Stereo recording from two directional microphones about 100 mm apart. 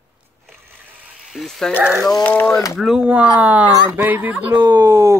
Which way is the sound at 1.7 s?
10° right (ahead or behind).